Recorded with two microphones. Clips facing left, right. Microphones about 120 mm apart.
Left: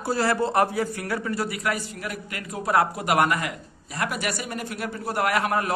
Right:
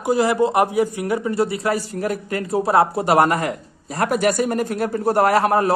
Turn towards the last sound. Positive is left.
turn(degrees=-35)  # may be behind; listen again after turning